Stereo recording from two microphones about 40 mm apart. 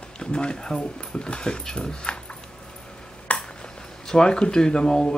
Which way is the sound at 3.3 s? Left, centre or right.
Left.